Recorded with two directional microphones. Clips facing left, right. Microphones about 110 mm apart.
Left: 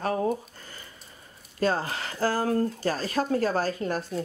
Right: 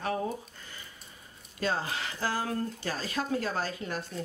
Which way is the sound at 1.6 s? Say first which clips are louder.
Left 5 dB; 40° left (ahead or behind).